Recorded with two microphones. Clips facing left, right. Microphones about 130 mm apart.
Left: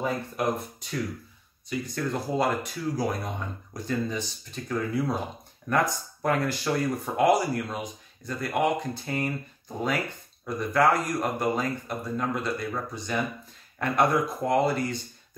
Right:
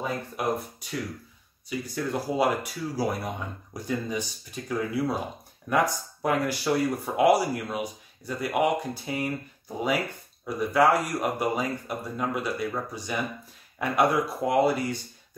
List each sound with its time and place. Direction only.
0.0 s speech: 5° right (ahead or behind)